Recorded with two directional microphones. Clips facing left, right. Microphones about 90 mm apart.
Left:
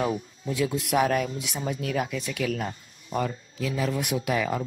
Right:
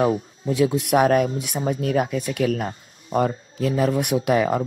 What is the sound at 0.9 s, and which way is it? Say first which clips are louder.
Speech: right 6 dB; 45° right (ahead or behind).